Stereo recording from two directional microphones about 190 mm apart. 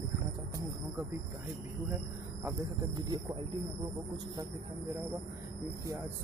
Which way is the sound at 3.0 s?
25° right (ahead or behind).